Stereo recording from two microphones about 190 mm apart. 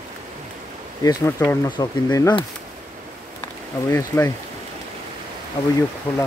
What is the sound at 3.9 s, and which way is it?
Speech, 15° left (ahead or behind).